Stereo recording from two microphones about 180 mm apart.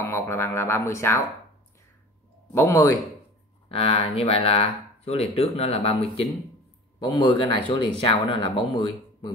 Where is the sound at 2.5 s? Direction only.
15° left (ahead or behind).